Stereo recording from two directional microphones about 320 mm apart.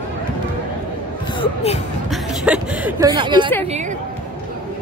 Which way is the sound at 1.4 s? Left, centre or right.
Centre.